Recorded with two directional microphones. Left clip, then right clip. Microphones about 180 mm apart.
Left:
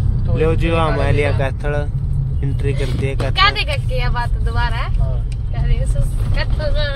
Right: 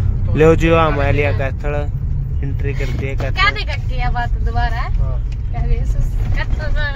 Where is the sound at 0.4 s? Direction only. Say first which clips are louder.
Right 7 dB; 35° right (ahead or behind).